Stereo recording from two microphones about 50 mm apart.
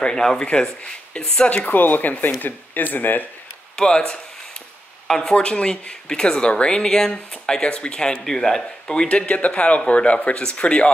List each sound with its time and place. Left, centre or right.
0.0 s speech: centre
1.5 s speech: left
3.7 s speech: centre
5.0 s speech: centre
9.1 s speech: left